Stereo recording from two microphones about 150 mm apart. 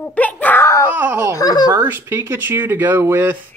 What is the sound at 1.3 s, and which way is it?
Speech, 25° left (ahead or behind).